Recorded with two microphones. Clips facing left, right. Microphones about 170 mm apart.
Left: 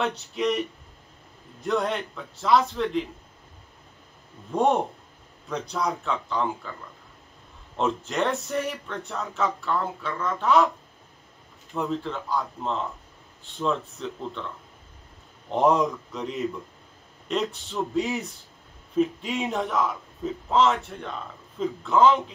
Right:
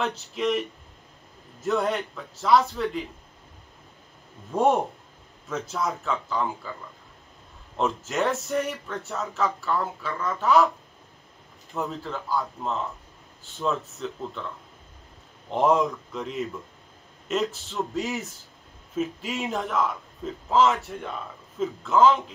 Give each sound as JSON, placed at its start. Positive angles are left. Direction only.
{"t": 0.0, "sound": "speech", "side_deg": 0}
{"t": 4.5, "sound": "speech", "side_deg": 0}
{"t": 7.7, "sound": "speech", "side_deg": 0}
{"t": 11.7, "sound": "speech", "side_deg": 0}
{"t": 15.5, "sound": "speech", "side_deg": 0}